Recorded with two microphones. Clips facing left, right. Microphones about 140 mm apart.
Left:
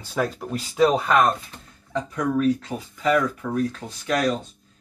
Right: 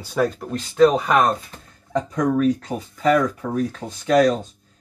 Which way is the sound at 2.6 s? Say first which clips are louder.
Right 3 dB; 40° right (ahead or behind).